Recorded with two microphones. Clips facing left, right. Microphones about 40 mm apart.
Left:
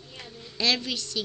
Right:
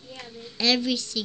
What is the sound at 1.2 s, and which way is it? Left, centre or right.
Speech, centre.